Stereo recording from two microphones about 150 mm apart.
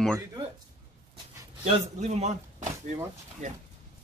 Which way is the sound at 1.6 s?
50° right (ahead or behind).